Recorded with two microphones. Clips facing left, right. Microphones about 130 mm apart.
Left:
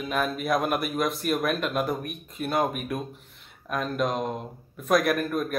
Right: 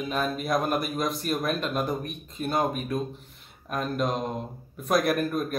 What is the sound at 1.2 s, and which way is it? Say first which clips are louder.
Speech: left 3 dB; 35° right (ahead or behind).